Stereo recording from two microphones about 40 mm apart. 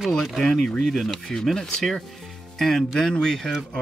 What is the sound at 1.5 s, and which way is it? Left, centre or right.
Speech, centre.